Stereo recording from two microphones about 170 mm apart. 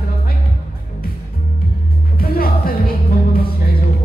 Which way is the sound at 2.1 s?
60° left (ahead or behind).